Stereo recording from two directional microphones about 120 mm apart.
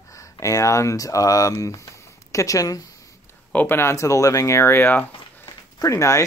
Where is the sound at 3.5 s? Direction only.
15° left (ahead or behind).